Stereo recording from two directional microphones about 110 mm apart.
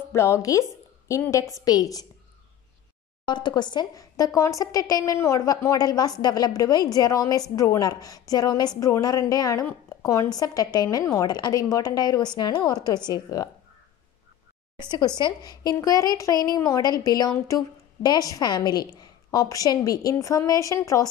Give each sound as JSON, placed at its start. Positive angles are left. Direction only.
{"t": 0.1, "sound": "a woman's voice", "side_deg": 25}
{"t": 3.3, "sound": "speech", "side_deg": 45}
{"t": 14.8, "sound": "speech", "side_deg": 45}